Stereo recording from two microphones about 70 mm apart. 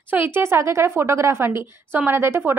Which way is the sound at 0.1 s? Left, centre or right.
Right.